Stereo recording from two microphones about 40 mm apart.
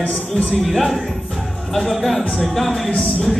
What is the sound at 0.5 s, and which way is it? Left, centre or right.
Speech, centre.